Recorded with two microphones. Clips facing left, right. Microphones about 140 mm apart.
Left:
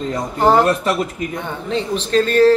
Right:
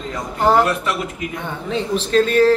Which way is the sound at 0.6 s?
35° left (ahead or behind).